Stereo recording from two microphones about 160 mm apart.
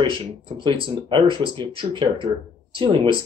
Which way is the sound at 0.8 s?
30° right (ahead or behind).